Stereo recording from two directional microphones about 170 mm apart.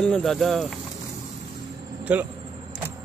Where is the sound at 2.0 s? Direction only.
10° right (ahead or behind).